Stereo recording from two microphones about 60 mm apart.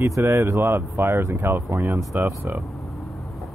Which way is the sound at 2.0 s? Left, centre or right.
Right.